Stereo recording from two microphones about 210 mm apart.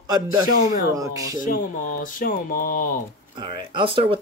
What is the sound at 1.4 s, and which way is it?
Speech, 40° left (ahead or behind).